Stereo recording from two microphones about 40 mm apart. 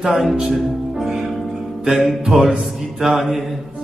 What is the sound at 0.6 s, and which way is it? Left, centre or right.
Speech, centre.